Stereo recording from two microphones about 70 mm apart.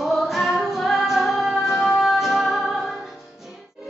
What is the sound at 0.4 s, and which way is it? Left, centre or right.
Music, centre.